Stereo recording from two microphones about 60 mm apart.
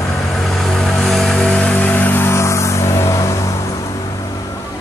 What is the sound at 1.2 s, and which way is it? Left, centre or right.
Music, centre.